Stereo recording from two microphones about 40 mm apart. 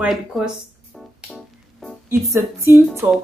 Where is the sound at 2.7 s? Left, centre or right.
Right.